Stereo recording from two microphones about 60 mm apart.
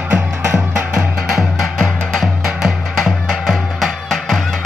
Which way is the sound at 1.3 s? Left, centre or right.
Centre.